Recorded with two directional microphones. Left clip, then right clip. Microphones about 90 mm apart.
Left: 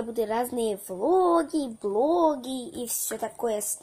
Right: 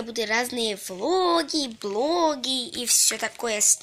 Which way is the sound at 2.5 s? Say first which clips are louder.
Right 7 dB; 30° left (ahead or behind).